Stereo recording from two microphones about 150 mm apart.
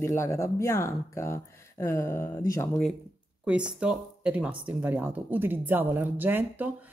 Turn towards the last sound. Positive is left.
turn(degrees=-10)  # may be behind; listen again after turning